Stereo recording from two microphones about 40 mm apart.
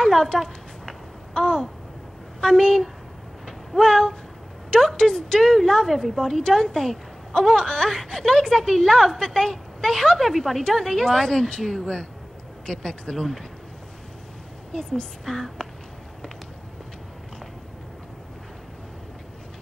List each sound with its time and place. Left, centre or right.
0.0 s a sound: centre
1.3 s speech: centre
3.8 s speech: centre
10.7 s speech: centre
14.7 s speech: centre